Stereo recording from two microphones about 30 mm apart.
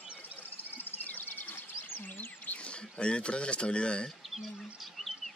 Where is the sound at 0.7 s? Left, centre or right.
Left.